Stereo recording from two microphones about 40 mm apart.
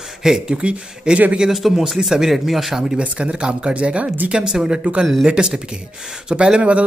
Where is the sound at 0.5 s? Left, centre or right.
Right.